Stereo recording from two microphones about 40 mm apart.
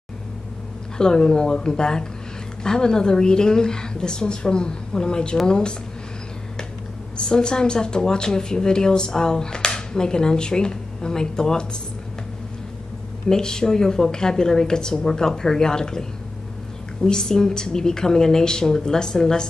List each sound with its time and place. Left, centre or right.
0.9 s a woman's voice: centre
7.2 s speech: centre
13.3 s speech: centre